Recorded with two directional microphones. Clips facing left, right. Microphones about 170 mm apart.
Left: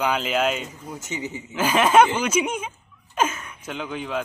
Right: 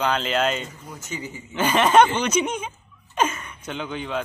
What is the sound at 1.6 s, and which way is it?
Speech, 5° left (ahead or behind).